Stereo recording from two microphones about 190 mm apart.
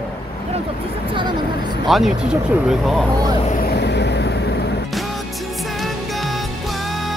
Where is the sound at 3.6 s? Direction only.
60° left (ahead or behind).